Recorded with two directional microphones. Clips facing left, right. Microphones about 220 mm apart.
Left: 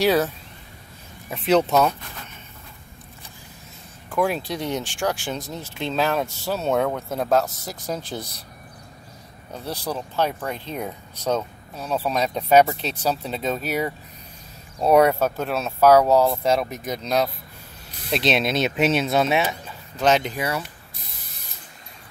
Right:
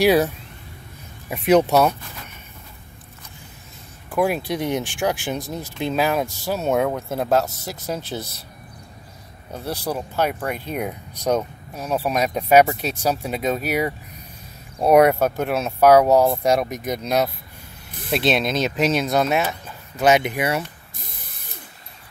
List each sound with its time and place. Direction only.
0.0 s speech: 10° right (ahead or behind)
1.3 s speech: 10° right (ahead or behind)
4.1 s speech: 10° right (ahead or behind)
9.7 s speech: 10° right (ahead or behind)
20.0 s speech: 10° right (ahead or behind)